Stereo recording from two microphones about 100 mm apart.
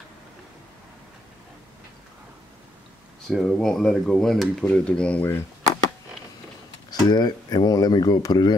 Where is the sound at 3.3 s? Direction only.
5° left (ahead or behind).